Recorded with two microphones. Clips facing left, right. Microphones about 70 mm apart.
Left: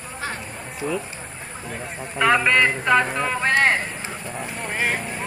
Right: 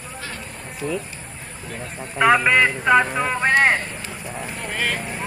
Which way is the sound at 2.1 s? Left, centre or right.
Centre.